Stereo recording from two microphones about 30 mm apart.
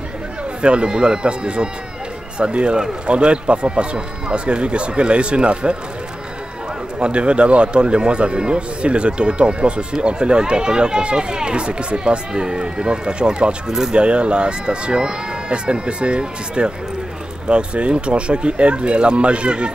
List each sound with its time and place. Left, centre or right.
0.6 s speech: right
7.0 s speech: right
13.7 s speech: centre
13.9 s speech: right